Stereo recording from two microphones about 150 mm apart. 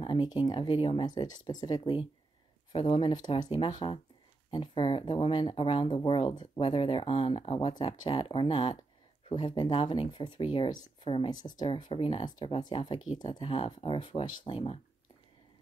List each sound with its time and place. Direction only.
0.0 s speech: 30° left (ahead or behind)